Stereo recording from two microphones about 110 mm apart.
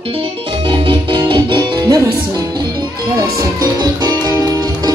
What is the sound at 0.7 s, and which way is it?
Music, 50° right (ahead or behind).